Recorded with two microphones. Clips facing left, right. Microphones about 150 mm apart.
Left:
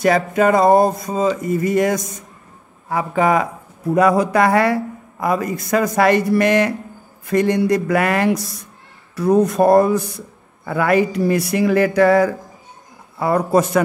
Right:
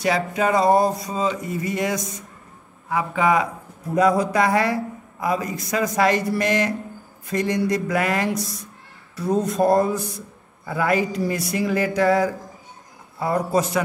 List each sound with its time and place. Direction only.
0.0 s music: 50° left (ahead or behind)
3.9 s speech: 65° left (ahead or behind)
9.1 s a sound: 65° left (ahead or behind)
10.6 s speech: 65° left (ahead or behind)